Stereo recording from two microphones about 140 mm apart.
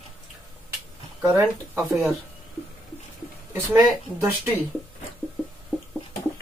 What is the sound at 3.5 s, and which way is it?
Speech, 15° right (ahead or behind).